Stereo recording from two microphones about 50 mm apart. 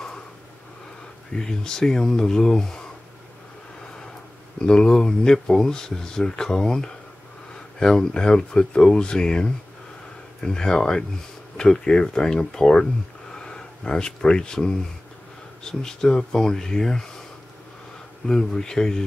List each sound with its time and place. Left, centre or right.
1.3 s speech: centre
4.6 s speech: centre
18.2 s speech: centre